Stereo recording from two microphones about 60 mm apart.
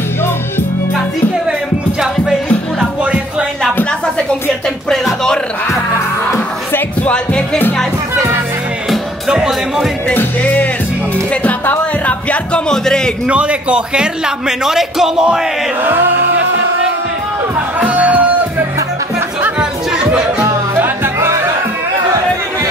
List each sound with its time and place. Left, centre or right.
3.0 s music: centre
7.0 s music: centre
10.4 s music: left
12.6 s a man's voice: centre
13.3 s a man's voice: centre
15.8 s music: right
17.7 s music: right
19.6 s music: centre
20.7 s music: right